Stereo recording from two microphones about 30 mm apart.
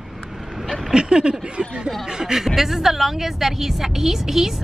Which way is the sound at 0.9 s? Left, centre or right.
Right.